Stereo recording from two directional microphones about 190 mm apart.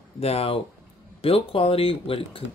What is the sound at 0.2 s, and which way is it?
Speech, 30° left (ahead or behind).